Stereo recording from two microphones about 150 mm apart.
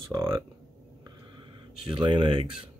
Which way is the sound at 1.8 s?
35° right (ahead or behind).